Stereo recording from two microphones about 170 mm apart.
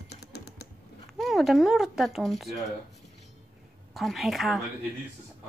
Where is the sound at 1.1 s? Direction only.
Centre (ahead or behind).